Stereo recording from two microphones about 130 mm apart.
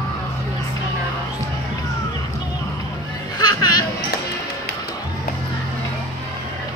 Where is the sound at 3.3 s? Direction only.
30° left (ahead or behind).